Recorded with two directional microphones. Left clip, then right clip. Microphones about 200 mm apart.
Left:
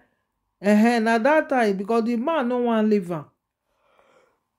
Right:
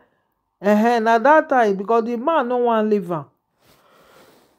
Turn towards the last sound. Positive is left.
turn(degrees=10)  # may be behind; listen again after turning